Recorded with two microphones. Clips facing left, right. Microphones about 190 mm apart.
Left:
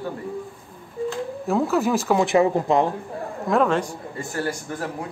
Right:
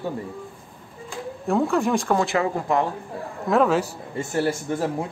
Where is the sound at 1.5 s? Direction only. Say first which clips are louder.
Even; centre (ahead or behind).